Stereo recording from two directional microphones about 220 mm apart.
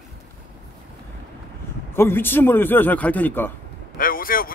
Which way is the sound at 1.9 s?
10° left (ahead or behind).